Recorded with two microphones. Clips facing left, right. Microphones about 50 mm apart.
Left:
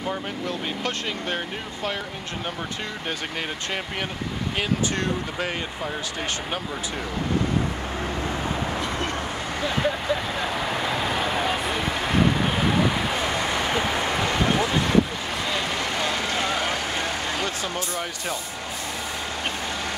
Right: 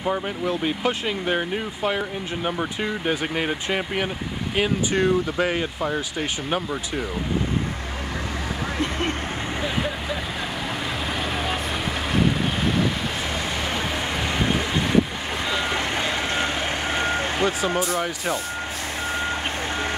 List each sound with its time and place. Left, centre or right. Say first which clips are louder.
0.0 s speech: right 4 dB; centre
11.1 s vehicle: left 2 dB; centre
13.4 s vehicle: left 2 dB; centre
15.4 s vehicle: right 3 dB; centre